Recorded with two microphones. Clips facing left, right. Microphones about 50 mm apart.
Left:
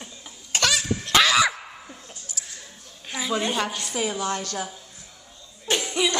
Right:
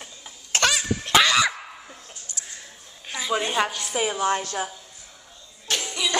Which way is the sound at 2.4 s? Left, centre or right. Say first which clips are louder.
Right 1 dB; centre.